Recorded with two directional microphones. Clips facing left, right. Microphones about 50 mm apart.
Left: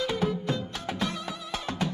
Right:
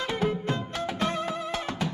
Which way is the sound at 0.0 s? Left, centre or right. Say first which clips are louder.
Even; right.